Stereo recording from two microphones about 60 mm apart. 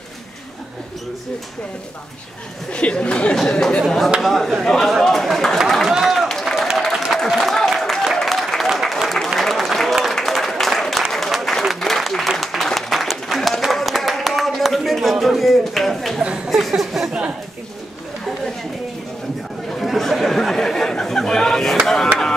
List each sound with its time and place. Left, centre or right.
2.7 s speech: centre
3.8 s speech: centre
5.9 s run: centre
6.8 s applause: centre
16.4 s a sound: centre
19.7 s chatter: centre
21.8 s a sound: centre